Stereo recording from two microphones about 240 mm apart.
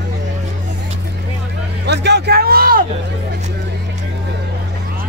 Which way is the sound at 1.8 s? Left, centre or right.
Right.